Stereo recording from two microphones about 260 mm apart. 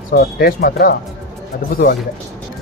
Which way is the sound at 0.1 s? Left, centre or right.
Left.